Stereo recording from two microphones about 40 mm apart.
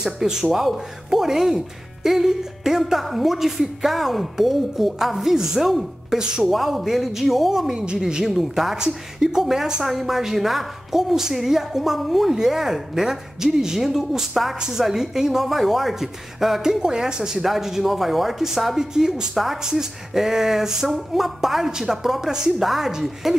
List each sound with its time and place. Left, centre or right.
0.0 s a woman's voice: centre
6.0 s speech: centre
6.4 s a woman's voice: centre
7.7 s a woman's voice: right
8.3 s a woman's voice: centre
8.7 s a woman's voice: centre
19.3 s a woman's voice: centre
19.6 s a woman's voice: centre